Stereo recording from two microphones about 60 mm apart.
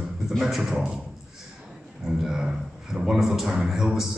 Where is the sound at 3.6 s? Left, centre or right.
Centre.